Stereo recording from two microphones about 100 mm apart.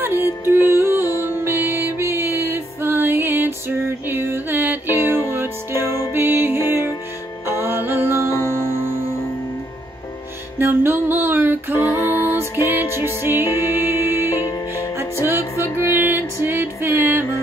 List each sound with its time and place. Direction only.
0.0 s music: 20° right (ahead or behind)
8.3 s music: 30° left (ahead or behind)
10.6 s music: 20° right (ahead or behind)
11.8 s music: 30° left (ahead or behind)
12.4 s music: 20° right (ahead or behind)
13.5 s music: 35° left (ahead or behind)
14.0 s music: 20° right (ahead or behind)
14.3 s music: 30° left (ahead or behind)
15.8 s music: 20° right (ahead or behind)